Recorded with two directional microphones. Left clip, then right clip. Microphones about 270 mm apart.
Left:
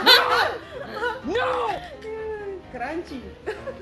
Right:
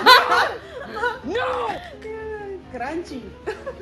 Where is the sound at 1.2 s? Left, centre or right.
Centre.